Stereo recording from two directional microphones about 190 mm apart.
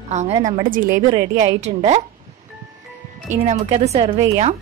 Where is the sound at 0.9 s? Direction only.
20° right (ahead or behind).